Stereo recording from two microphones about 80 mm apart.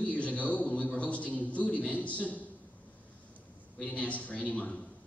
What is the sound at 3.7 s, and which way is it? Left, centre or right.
A man's voice, centre.